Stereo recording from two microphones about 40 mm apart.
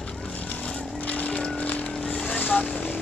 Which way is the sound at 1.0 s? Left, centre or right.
Left.